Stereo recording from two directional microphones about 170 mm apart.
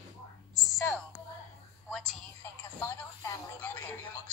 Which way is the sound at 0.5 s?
20° right (ahead or behind).